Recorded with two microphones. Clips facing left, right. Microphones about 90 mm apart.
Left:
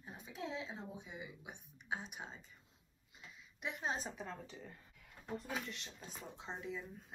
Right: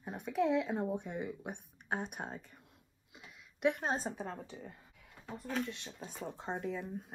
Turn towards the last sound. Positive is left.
turn(degrees=-50)  # may be behind; listen again after turning